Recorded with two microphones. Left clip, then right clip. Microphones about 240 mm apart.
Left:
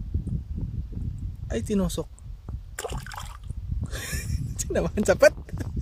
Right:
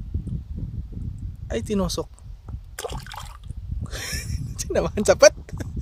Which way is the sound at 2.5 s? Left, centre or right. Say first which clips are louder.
Right 2 dB; centre.